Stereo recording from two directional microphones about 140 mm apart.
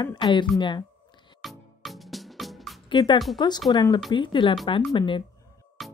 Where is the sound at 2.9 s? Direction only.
35° left (ahead or behind).